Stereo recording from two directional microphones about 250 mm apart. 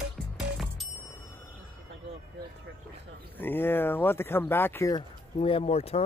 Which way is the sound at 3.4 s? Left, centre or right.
Centre.